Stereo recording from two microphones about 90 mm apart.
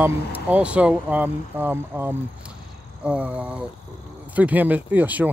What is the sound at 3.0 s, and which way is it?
Speech, 15° right (ahead or behind).